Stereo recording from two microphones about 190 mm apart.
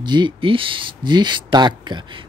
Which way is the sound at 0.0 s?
25° right (ahead or behind).